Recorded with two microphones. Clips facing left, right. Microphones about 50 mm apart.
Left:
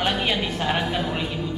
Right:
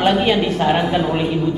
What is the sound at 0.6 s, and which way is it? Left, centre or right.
Speech, right.